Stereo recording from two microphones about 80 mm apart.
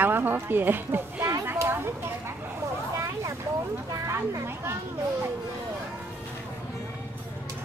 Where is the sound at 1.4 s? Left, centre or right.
Right.